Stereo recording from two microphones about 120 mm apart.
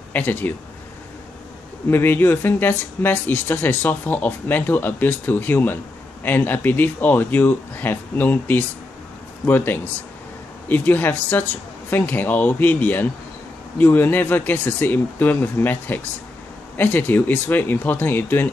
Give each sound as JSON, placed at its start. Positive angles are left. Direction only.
{"t": 0.1, "sound": "speech", "side_deg": 15}
{"t": 1.9, "sound": "speech", "side_deg": 20}